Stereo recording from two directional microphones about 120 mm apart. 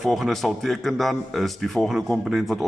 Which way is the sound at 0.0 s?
Centre (ahead or behind).